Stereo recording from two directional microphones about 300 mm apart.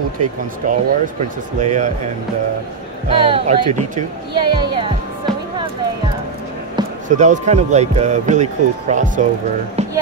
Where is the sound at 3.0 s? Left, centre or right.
Centre.